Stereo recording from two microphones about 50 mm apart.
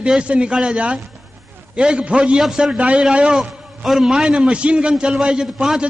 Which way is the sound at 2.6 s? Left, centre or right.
Right.